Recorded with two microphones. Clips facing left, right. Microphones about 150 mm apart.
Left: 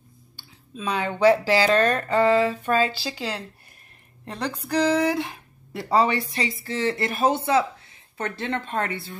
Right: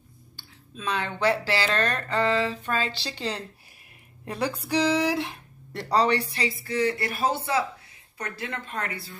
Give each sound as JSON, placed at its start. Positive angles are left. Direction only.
{"t": 0.7, "sound": "speech", "side_deg": 15}
{"t": 4.3, "sound": "speech", "side_deg": -10}
{"t": 6.0, "sound": "speech", "side_deg": 20}